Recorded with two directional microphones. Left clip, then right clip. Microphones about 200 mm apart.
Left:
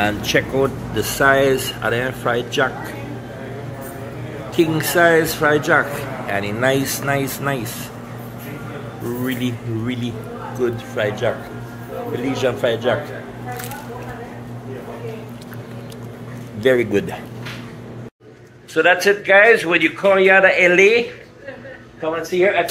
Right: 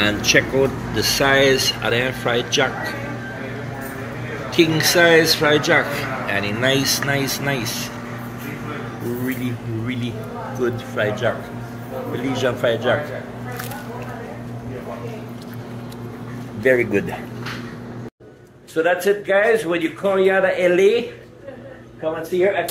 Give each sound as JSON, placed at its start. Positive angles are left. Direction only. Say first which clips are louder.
{"t": 0.0, "sound": "speech", "louder": "right 2 dB", "side_deg": 5}
{"t": 4.6, "sound": "speech", "louder": "right 1 dB", "side_deg": 0}
{"t": 10.6, "sound": "a man's voice", "louder": "left 1 dB", "side_deg": 15}
{"t": 16.6, "sound": "a man's voice", "louder": "left 1 dB", "side_deg": 20}
{"t": 18.8, "sound": "a man's voice", "louder": "left 3 dB", "side_deg": 10}
{"t": 22.3, "sound": "a man's voice", "louder": "left 2 dB", "side_deg": 15}